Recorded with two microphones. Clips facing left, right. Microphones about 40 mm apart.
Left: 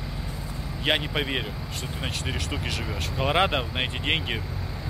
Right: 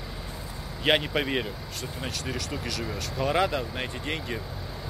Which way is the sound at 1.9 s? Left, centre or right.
Left.